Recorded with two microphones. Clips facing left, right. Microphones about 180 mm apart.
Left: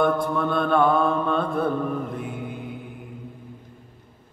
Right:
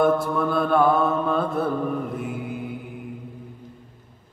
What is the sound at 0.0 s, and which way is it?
Mantra, 5° right (ahead or behind).